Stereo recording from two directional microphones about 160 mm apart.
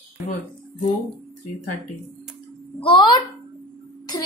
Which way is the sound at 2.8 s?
30° left (ahead or behind).